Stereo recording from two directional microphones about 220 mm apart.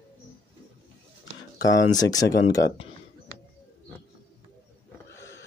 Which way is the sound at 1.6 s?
15° left (ahead or behind).